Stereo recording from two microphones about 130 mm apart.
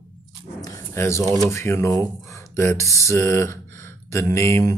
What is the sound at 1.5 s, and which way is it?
Speech, 20° left (ahead or behind).